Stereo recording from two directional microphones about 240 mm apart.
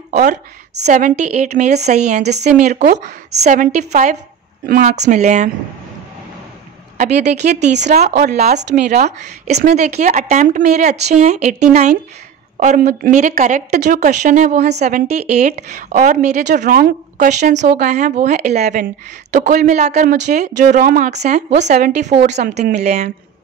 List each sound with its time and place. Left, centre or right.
0.1 s a woman's voice: right
7.7 s speech: right
8.2 s speech: right
9.2 s speech: right
22.8 s speech: right